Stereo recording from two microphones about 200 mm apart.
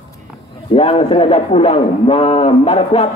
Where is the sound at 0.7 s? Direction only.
30° left (ahead or behind).